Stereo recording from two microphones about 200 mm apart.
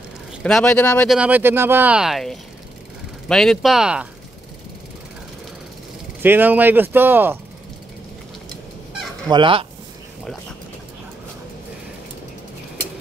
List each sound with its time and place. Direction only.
0.4 s speech: 5° left (ahead or behind)
6.2 s speech: 10° right (ahead or behind)
9.3 s speech: 25° right (ahead or behind)